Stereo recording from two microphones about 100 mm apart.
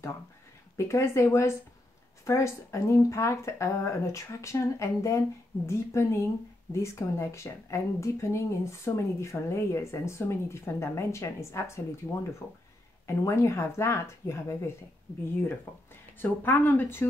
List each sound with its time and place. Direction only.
0.7 s speech: 30° left (ahead or behind)
16.2 s speech: 20° left (ahead or behind)